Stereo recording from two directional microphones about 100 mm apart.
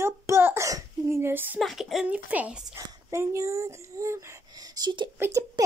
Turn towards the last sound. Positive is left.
turn(degrees=-20)  # may be behind; listen again after turning